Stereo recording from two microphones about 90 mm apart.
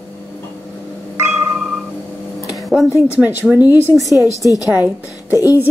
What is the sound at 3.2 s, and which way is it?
A woman's voice, 15° right (ahead or behind).